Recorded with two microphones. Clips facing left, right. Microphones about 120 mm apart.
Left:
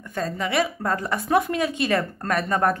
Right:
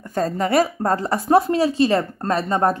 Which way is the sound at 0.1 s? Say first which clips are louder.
Right 6 dB; 40° right (ahead or behind).